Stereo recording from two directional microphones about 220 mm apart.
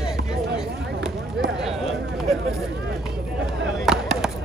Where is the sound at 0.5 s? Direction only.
5° right (ahead or behind).